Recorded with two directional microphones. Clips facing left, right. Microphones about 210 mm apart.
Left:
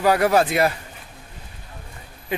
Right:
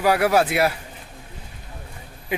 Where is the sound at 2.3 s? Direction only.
10° right (ahead or behind).